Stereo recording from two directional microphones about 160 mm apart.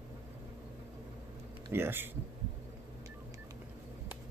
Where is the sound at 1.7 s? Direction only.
15° right (ahead or behind).